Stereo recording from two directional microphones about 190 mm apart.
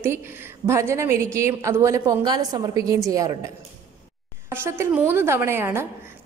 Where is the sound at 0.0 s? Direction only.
10° right (ahead or behind).